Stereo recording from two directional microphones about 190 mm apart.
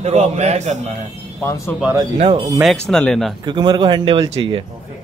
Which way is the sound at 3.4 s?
20° right (ahead or behind).